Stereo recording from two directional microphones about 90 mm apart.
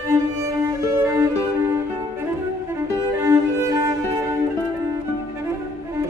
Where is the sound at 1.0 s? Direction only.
30° right (ahead or behind).